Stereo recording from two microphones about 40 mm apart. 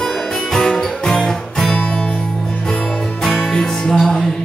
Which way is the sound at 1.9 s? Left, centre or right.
Left.